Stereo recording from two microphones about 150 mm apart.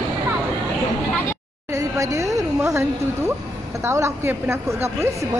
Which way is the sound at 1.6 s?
20° right (ahead or behind).